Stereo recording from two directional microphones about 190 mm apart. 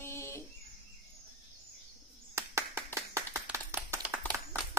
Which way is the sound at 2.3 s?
15° right (ahead or behind).